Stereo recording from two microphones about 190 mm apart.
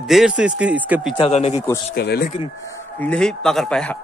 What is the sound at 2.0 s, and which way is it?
Speech, 55° left (ahead or behind).